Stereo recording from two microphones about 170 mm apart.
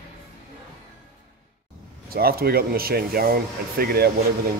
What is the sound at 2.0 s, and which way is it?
Speech, 60° right (ahead or behind).